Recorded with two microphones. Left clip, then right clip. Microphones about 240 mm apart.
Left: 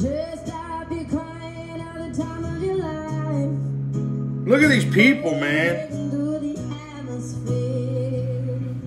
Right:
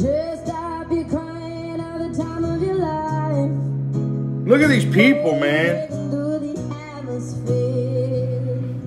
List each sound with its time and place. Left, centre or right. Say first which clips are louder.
0.0 s music: right 5 dB; centre
4.5 s speech: right 1 dB; centre
7.4 s music: right 5 dB; centre